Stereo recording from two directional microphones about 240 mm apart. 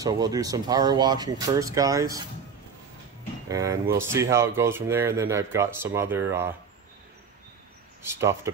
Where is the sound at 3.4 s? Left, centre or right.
Centre.